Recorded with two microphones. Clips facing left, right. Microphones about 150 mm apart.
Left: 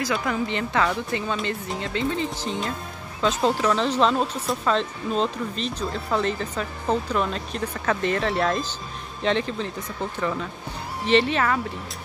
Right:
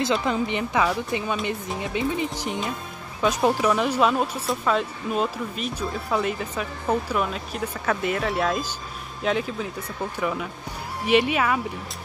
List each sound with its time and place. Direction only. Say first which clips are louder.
0.0 s speech: right 2 dB; 25° right (ahead or behind)